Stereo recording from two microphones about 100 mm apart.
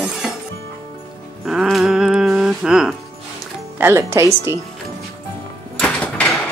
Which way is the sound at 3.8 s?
25° right (ahead or behind).